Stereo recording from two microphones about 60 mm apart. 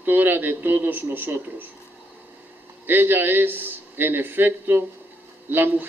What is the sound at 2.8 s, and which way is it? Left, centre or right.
A man's voice, right.